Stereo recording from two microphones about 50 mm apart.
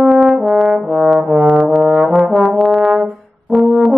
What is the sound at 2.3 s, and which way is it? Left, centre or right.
Brass instrument, centre.